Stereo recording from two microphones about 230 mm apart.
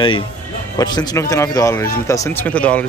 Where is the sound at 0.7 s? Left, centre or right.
Centre.